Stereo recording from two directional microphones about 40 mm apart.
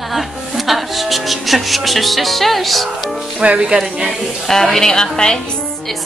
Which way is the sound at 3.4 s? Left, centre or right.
Right.